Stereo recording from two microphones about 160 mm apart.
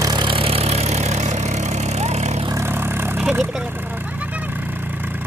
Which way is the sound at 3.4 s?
Centre (ahead or behind).